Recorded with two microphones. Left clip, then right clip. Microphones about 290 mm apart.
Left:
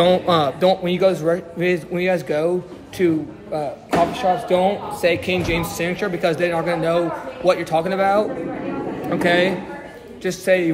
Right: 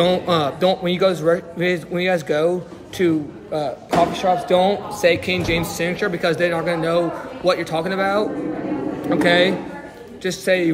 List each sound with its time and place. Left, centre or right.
0.0 s a man's voice: centre